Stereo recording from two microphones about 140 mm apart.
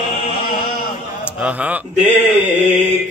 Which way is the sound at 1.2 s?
10° right (ahead or behind).